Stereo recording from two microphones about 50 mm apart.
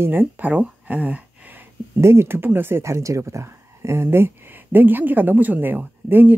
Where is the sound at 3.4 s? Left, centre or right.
Right.